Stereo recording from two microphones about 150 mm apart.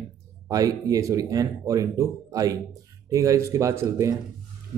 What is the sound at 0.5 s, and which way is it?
A man's voice, 25° right (ahead or behind).